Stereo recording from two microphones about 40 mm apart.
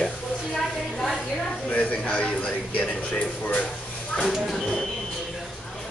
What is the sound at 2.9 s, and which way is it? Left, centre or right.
Speech, left.